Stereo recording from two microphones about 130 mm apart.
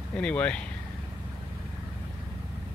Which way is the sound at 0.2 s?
10° left (ahead or behind).